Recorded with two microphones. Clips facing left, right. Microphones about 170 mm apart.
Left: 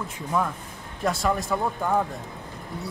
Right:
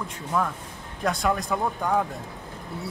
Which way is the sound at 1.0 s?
Centre (ahead or behind).